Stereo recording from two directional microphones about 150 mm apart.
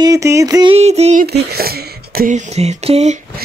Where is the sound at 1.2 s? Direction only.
90° right.